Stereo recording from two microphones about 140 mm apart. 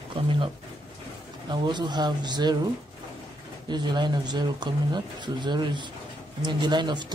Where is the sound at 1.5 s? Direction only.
30° right (ahead or behind).